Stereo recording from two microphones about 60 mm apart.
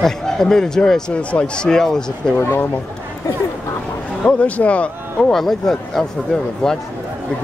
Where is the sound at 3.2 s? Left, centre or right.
Left.